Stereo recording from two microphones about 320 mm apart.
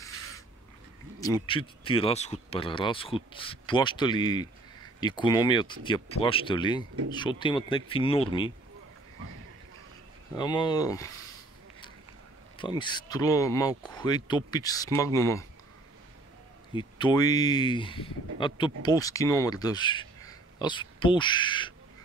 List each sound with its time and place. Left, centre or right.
1.2 s speech: centre
10.3 s speech: centre
12.5 s speech: centre
16.7 s speech: centre